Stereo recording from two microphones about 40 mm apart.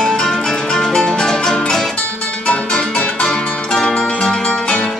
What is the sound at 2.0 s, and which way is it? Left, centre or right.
Music, left.